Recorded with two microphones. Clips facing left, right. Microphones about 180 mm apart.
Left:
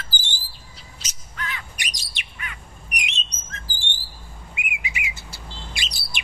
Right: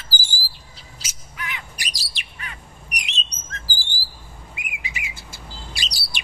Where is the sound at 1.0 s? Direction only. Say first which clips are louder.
Left 1 dB; 15° right (ahead or behind).